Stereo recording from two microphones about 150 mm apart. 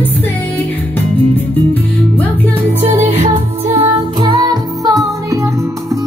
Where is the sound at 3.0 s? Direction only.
45° right (ahead or behind); by 6.0 s 20° right (ahead or behind).